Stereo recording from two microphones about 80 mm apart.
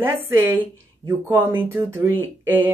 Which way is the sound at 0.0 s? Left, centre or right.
Right.